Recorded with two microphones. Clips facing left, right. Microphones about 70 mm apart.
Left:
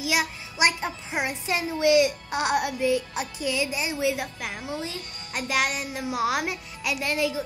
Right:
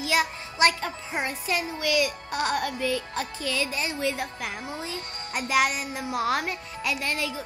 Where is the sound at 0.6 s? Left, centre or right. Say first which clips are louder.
Right 1 dB; centre.